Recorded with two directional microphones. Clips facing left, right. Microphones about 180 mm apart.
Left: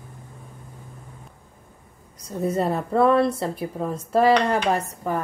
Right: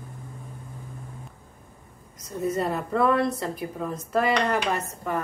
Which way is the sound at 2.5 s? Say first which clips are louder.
Left 3 dB; 30° left (ahead or behind).